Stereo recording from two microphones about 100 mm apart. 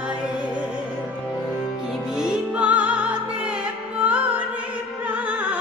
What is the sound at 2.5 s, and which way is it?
Music, 15° right (ahead or behind).